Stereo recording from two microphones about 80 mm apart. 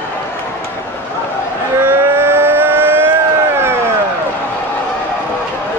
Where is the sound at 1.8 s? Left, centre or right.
Right.